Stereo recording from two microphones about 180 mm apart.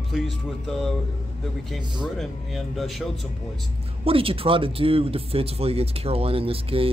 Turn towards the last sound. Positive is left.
turn(degrees=-30)  # may be behind; listen again after turning